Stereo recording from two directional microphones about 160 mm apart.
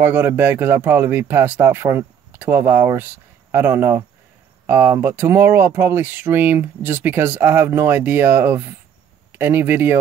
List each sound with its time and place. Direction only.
0.0 s speech: 15° right (ahead or behind)